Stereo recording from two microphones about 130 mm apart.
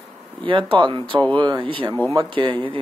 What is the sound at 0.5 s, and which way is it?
Speech, 40° right (ahead or behind).